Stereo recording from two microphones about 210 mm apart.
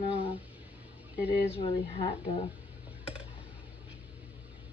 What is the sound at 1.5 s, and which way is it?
Speech, 30° left (ahead or behind).